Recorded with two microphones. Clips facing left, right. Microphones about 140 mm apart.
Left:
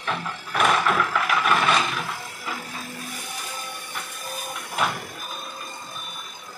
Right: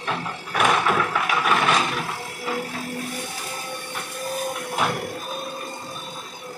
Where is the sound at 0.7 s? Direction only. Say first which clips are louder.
Right 1 dB; 20° right (ahead or behind).